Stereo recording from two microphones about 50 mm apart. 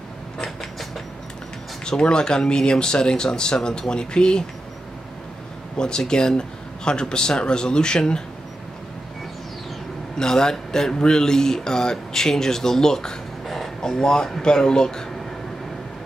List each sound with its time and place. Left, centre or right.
1.9 s speech: centre
5.8 s speech: centre
10.1 s speech: centre